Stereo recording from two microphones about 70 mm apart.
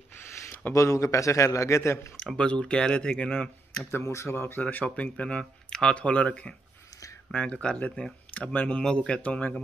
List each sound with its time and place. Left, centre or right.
0.7 s a man's voice: left
2.1 s speech: centre
3.9 s speech: left
4.6 s speech: left
7.8 s speech: centre